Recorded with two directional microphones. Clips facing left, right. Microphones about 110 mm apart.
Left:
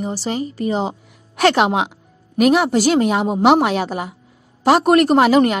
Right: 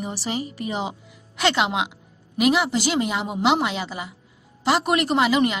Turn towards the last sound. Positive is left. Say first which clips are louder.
# left 7 dB
turn(degrees=45)  # may be behind; listen again after turning